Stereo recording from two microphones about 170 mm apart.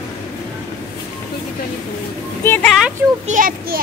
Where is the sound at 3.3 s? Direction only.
55° right (ahead or behind).